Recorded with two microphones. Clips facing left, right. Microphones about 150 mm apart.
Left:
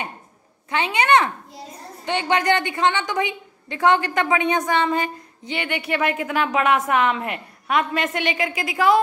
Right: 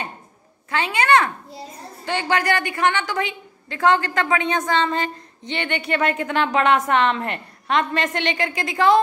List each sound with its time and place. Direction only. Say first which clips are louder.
0.7 s a woman's voice: even; 20° left (ahead or behind)